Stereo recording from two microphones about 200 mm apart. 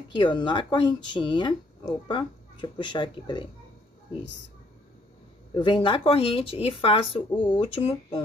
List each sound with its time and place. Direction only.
0.1 s speech: 25° left (ahead or behind)
5.5 s speech: 25° left (ahead or behind)